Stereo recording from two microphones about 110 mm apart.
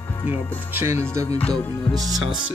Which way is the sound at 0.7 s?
20° right (ahead or behind).